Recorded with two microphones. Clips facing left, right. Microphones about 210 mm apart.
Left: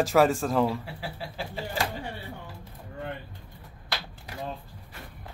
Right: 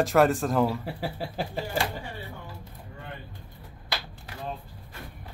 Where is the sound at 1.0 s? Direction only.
45° right (ahead or behind).